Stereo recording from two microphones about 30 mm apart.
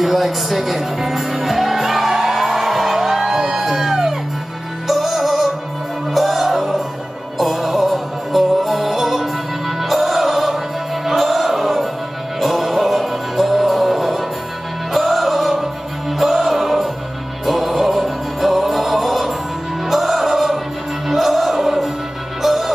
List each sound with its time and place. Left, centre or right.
0.0 s music: centre
3.3 s music: centre
3.6 s music: centre